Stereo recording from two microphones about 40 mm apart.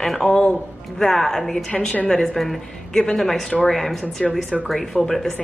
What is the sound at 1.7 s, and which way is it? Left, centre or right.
Speech, left.